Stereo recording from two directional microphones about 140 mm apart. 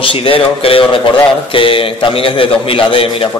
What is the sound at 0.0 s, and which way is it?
A man's voice, 40° left (ahead or behind).